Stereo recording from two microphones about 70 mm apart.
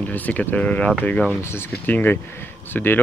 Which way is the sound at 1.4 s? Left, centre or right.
Left.